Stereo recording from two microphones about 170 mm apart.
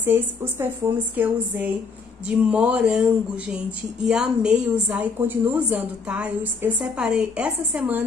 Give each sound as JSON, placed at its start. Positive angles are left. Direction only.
{"t": 0.0, "sound": "a woman's voice", "side_deg": -10}